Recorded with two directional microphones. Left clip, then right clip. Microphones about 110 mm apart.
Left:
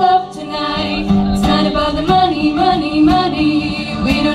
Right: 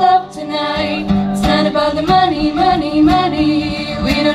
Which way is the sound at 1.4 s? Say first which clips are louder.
Right 2 dB; 35° right (ahead or behind).